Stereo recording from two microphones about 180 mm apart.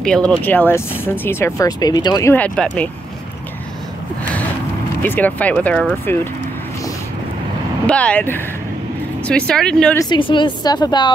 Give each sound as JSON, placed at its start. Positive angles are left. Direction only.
{"t": 0.0, "sound": "speech", "side_deg": 5}
{"t": 2.3, "sound": "speech", "side_deg": 5}
{"t": 5.0, "sound": "speech", "side_deg": 10}
{"t": 7.8, "sound": "speech", "side_deg": 5}
{"t": 9.9, "sound": "a woman's voice", "side_deg": 25}